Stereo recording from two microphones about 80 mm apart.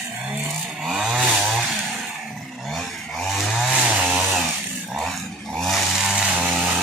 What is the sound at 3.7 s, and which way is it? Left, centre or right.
Chainsaw, centre.